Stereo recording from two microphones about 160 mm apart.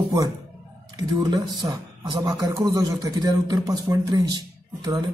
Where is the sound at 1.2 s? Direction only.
25° right (ahead or behind).